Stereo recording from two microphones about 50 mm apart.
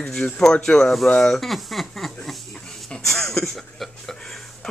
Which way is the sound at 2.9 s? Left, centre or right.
Centre.